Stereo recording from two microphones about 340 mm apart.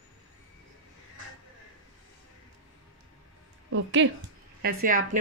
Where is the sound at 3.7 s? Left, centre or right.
Right.